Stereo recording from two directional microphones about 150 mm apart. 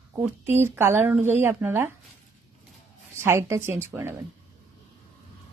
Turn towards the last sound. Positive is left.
turn(degrees=-15)  # may be behind; listen again after turning